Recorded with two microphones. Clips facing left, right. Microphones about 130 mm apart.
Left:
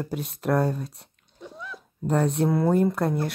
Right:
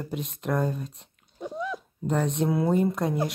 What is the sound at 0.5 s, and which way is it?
Speech, 75° left (ahead or behind).